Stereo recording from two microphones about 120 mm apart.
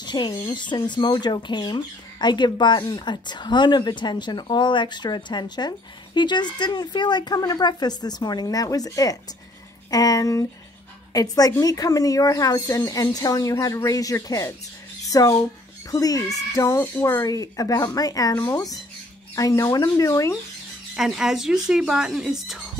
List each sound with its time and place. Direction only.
0.0 s speech: 35° left (ahead or behind)
20.9 s speech: 5° right (ahead or behind)